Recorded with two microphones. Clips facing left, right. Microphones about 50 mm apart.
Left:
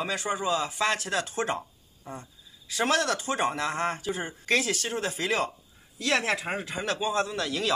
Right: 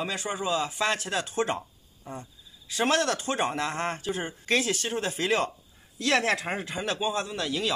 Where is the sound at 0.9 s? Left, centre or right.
Right.